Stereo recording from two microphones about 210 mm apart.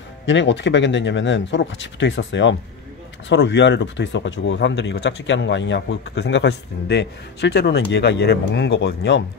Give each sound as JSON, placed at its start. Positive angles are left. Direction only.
{"t": 0.2, "sound": "speech", "side_deg": 60}